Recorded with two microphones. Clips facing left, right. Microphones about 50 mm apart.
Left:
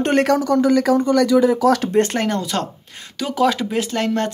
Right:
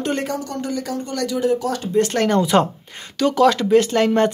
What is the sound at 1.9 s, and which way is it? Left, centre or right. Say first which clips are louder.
Speech: left 1 dB; left.